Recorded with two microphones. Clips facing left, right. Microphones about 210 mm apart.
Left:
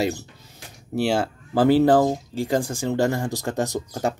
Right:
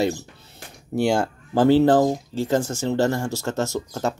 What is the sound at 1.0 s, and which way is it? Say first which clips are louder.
Speech: right 2 dB; 5° left (ahead or behind).